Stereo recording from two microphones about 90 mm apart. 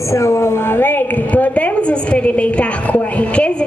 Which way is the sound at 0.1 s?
30° left (ahead or behind).